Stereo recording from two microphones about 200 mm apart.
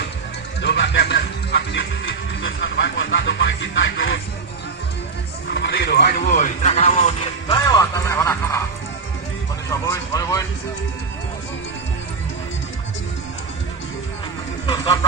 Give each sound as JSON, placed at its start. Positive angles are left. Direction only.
{"t": 0.6, "sound": "music", "side_deg": 60}
{"t": 5.5, "sound": "a man's voice", "side_deg": 60}
{"t": 7.4, "sound": "speech", "side_deg": 20}
{"t": 9.7, "sound": "speech", "side_deg": 15}